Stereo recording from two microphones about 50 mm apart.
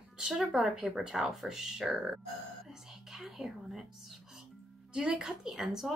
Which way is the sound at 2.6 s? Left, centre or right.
Centre.